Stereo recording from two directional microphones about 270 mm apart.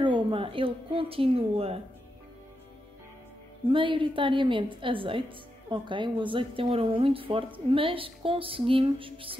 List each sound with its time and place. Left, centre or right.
0.0 s speech: centre
3.6 s speech: centre